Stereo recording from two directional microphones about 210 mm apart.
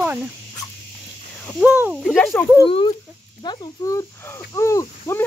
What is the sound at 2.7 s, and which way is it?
Speech, 25° left (ahead or behind).